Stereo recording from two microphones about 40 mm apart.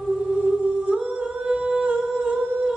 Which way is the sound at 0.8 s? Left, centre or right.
Right.